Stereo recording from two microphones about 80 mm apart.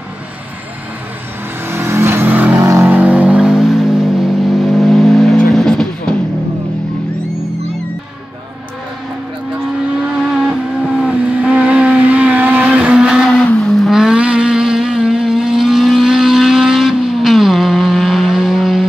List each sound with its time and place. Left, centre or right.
1.7 s vehicle: right
2.2 s vehicle: right
2.6 s vehicle: right
2.9 s vehicle: centre
10.0 s vehicle: centre
11.1 s vehicle: centre
13.6 s vehicle: centre